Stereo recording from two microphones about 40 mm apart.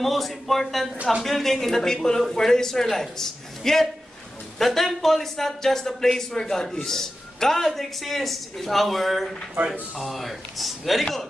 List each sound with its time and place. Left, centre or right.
0.0 s a man's voice: centre
9.6 s speech: right
9.9 s speech: centre